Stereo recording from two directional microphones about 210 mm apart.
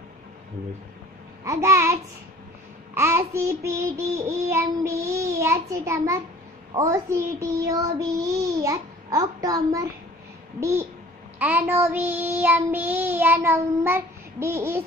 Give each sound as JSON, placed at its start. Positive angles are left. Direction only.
{"t": 1.4, "sound": "child singing", "side_deg": -15}